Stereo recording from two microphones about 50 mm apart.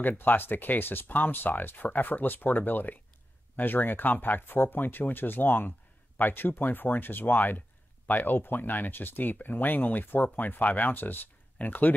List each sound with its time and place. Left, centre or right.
0.0 s speech: left